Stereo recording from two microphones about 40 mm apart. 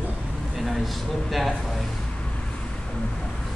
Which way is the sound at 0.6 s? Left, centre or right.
Centre.